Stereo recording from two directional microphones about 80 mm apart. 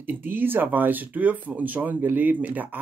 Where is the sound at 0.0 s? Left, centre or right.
Right.